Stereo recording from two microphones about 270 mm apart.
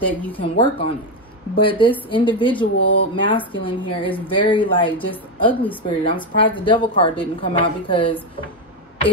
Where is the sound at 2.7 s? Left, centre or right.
Left.